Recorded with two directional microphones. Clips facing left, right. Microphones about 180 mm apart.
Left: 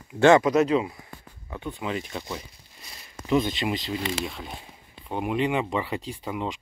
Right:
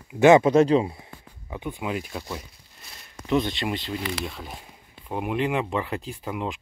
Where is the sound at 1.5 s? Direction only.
15° right (ahead or behind).